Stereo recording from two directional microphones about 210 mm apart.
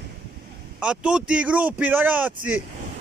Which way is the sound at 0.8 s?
5° right (ahead or behind).